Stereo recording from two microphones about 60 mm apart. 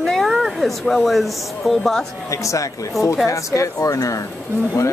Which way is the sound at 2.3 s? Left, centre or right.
Left.